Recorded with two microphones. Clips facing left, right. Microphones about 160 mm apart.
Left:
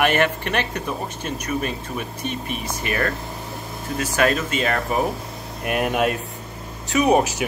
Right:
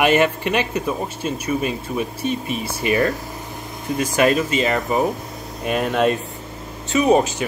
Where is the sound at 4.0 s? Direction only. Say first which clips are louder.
Right 3 dB; 10° right (ahead or behind).